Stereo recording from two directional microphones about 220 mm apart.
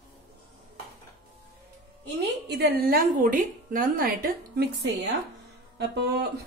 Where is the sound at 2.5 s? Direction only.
45° right (ahead or behind).